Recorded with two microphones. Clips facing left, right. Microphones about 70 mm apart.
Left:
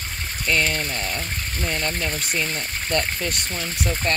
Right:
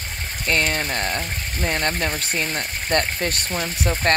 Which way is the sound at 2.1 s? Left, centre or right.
Right.